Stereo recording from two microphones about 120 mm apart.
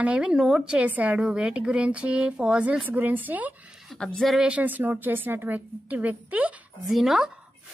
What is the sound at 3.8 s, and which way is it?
A woman's voice, 5° left (ahead or behind).